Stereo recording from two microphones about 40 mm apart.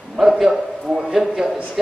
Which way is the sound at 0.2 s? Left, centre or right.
Centre.